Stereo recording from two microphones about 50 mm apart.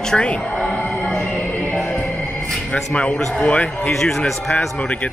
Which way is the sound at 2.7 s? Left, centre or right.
Left.